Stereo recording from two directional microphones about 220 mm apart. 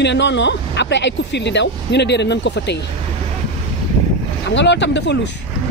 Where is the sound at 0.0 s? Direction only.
50° left (ahead or behind).